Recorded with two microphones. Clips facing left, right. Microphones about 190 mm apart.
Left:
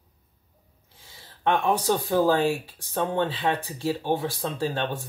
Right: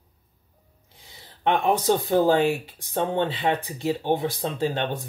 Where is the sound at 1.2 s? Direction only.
15° right (ahead or behind).